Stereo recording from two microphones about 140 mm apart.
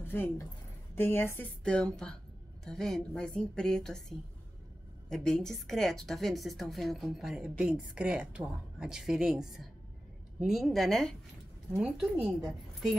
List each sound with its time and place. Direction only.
0.0 s a woman's voice: 15° left (ahead or behind)
5.1 s a woman's voice: 5° left (ahead or behind)